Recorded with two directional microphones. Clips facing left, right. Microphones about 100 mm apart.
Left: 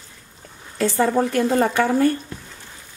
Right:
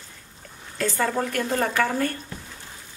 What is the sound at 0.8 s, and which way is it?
A woman's voice, 25° left (ahead or behind).